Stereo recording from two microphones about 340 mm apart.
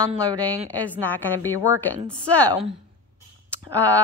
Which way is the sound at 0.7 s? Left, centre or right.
Centre.